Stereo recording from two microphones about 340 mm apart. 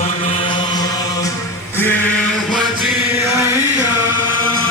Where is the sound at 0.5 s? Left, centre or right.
Centre.